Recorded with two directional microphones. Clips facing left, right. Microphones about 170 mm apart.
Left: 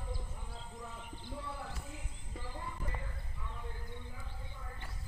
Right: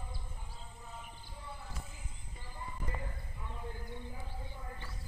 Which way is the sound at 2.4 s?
85° left.